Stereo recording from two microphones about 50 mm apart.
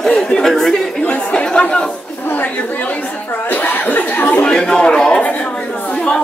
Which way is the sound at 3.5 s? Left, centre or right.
Left.